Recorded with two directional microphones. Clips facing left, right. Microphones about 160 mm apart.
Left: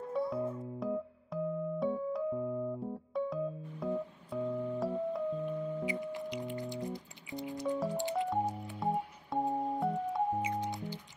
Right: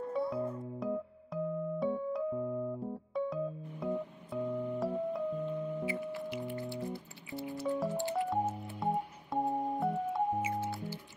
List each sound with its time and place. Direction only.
0.1 s music: centre (ahead or behind)
5.9 s music: 15° left (ahead or behind)
7.6 s music: 5° right (ahead or behind)
7.9 s music: 15° left (ahead or behind)
8.7 s music: centre (ahead or behind)
10.4 s music: 20° left (ahead or behind)